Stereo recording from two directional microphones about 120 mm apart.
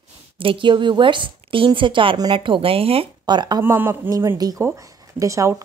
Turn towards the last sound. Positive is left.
turn(degrees=-25)  # may be behind; listen again after turning